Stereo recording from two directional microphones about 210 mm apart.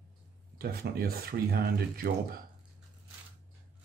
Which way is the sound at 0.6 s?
45° right (ahead or behind).